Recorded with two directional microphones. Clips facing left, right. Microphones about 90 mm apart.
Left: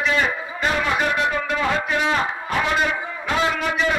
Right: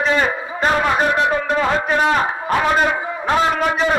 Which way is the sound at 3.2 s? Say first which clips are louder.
Right 5 dB; 40° right (ahead or behind).